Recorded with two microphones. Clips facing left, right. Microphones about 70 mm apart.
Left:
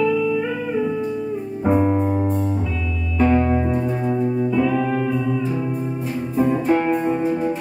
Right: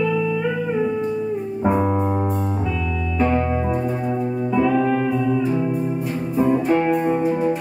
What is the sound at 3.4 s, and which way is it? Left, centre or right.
Music, centre.